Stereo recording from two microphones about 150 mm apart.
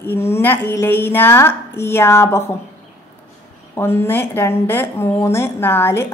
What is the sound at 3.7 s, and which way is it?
A woman's voice, 15° left (ahead or behind).